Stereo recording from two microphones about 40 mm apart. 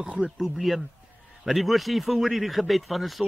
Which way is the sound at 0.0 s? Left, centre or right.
Right.